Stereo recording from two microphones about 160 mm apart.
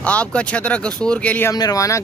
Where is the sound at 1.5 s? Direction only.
20° left (ahead or behind).